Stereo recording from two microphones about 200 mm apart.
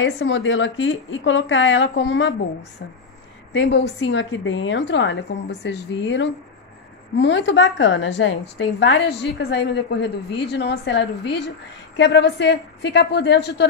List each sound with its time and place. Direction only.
0.0 s a woman's voice: 70° left (ahead or behind)
3.5 s a woman's voice: 60° left (ahead or behind)